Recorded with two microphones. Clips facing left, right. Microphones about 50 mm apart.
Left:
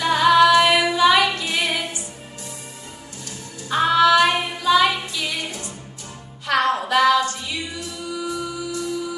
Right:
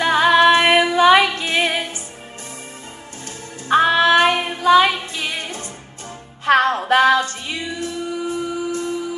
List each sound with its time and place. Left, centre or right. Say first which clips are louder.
0.0 s music: right 1 dB; right
3.6 s female singing: right 2 dB; right
6.4 s a capella: right 4 dB; right